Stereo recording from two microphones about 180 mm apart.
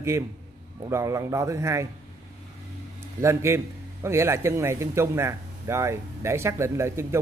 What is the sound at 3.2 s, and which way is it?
A man's voice, 15° right (ahead or behind).